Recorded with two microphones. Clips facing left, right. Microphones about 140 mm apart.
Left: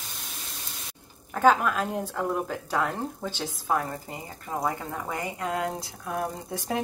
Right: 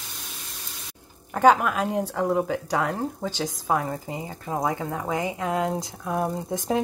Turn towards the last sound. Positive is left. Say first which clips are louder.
# right 5 dB
turn(degrees=-25)  # may be behind; listen again after turning